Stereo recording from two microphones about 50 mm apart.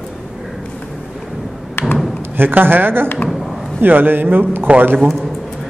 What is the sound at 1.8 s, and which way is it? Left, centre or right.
Thump, left.